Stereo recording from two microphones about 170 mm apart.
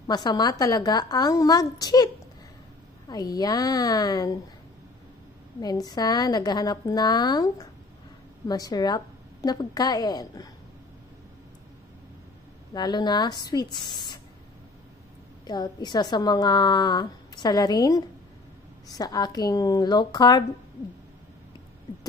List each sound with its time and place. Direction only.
0.0 s a woman's voice: 25° left (ahead or behind)
3.1 s a woman's voice: 20° left (ahead or behind)
5.6 s a woman's voice: 20° left (ahead or behind)
12.7 s a woman's voice: 25° left (ahead or behind)
15.4 s a woman's voice: 25° left (ahead or behind)